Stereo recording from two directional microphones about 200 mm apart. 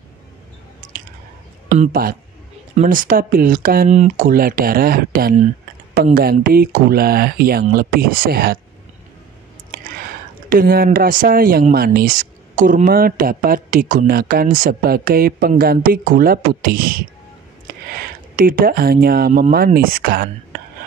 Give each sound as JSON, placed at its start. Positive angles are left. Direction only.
{"t": 1.8, "sound": "speech", "side_deg": -45}
{"t": 10.5, "sound": "speech", "side_deg": -45}